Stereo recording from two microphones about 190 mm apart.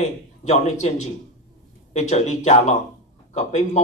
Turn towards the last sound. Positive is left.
turn(degrees=35)  # may be behind; listen again after turning